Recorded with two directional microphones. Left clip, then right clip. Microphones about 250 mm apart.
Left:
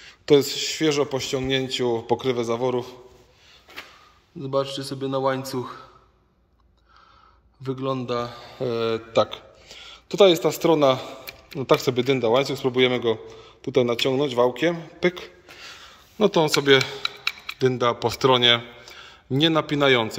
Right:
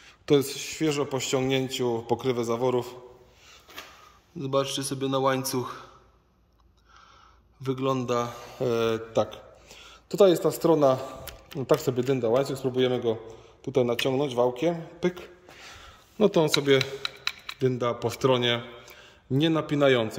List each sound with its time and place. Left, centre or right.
0.0 s a man's voice: centre
4.4 s a man's voice: centre
7.6 s a man's voice: centre
13.6 s a man's voice: left
14.4 s a man's voice: centre